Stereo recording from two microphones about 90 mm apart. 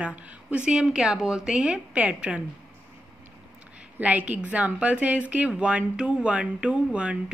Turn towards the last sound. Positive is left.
turn(degrees=-10)  # may be behind; listen again after turning